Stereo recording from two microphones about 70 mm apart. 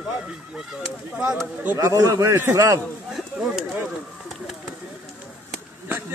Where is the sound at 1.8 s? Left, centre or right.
Right.